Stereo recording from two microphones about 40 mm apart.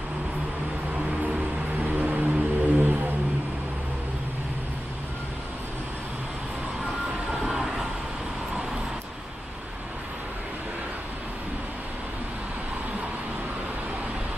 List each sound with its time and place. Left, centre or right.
1.8 s music: right
7.2 s vehicle: centre